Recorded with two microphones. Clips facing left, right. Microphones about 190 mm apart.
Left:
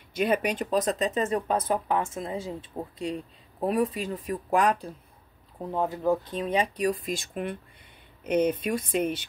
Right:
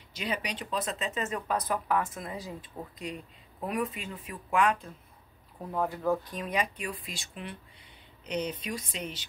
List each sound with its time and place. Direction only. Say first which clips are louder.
0.1 s speech: left 9 dB; 55° left (ahead or behind); by 4.9 s 35° left (ahead or behind)
5.6 s speech: left 3 dB; 20° left (ahead or behind); by 9.2 s 55° left (ahead or behind)